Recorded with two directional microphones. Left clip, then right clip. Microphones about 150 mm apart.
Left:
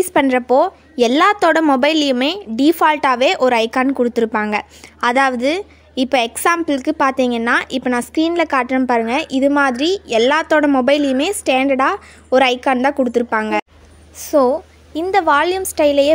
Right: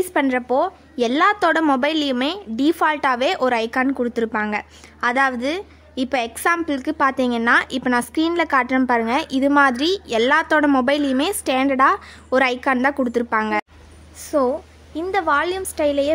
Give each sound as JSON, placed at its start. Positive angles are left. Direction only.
{"t": 0.0, "sound": "a woman's voice", "side_deg": 30}
{"t": 14.2, "sound": "a woman's voice", "side_deg": 30}